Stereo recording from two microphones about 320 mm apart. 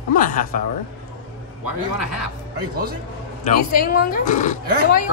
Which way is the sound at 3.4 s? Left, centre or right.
Left.